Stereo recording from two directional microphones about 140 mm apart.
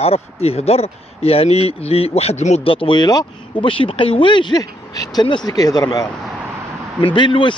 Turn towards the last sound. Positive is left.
turn(degrees=35)  # may be behind; listen again after turning